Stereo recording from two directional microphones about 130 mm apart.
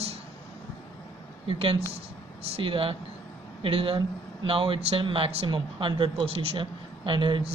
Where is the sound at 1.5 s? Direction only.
45° right (ahead or behind).